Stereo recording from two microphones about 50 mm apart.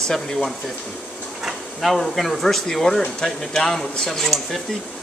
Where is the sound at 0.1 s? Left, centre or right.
Centre.